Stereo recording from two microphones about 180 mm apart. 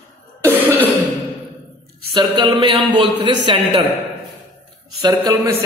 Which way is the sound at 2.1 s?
25° right (ahead or behind).